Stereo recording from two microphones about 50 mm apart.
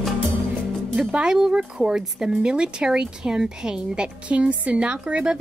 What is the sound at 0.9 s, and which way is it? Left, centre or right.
A woman's voice, centre.